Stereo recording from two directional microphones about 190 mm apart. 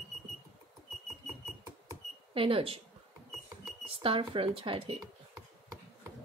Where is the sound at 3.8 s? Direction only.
30° right (ahead or behind).